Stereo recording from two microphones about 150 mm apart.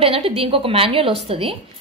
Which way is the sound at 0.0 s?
40° right (ahead or behind).